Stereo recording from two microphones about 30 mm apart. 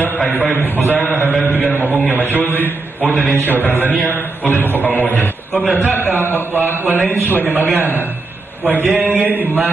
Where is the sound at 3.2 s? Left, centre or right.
Right.